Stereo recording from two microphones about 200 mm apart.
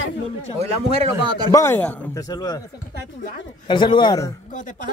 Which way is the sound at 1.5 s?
15° left (ahead or behind).